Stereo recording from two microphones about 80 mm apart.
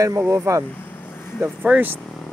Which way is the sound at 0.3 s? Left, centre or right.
Right.